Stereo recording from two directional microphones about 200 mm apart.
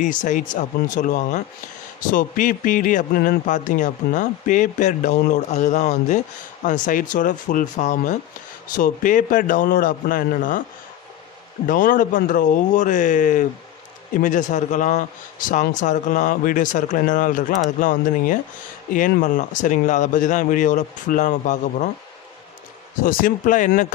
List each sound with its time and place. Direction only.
0.0 s a man's voice: 40° left (ahead or behind)
11.6 s a man's voice: 45° left (ahead or behind)
22.9 s a man's voice: 45° left (ahead or behind)